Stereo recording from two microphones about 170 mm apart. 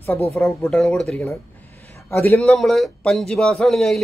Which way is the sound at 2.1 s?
15° left (ahead or behind).